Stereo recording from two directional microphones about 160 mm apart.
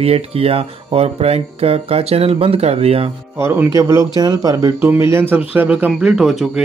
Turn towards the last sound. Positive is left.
turn(degrees=0)  # may be behind; listen again after turning